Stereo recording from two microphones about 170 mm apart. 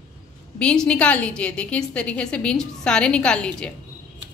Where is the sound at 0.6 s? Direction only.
5° left (ahead or behind).